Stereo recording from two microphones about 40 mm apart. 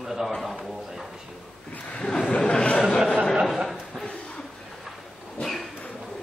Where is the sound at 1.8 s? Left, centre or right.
Centre.